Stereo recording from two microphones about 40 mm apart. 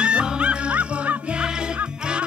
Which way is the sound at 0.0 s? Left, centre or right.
Right.